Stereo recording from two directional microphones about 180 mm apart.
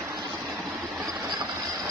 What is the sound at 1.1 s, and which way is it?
Vehicle, 20° right (ahead or behind).